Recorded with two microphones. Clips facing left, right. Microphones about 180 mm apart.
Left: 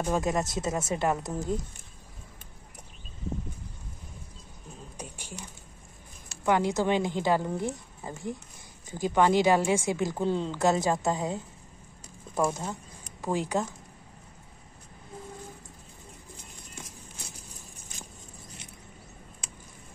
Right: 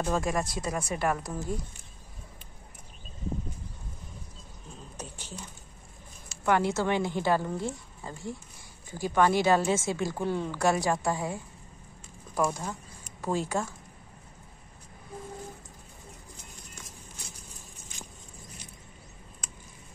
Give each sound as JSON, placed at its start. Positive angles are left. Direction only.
{"t": 0.0, "sound": "a woman's voice", "side_deg": 20}
{"t": 4.9, "sound": "a sound", "side_deg": 10}
{"t": 6.4, "sound": "a woman's voice", "side_deg": 15}